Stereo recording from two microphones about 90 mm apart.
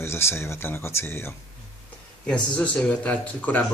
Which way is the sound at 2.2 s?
10° left (ahead or behind).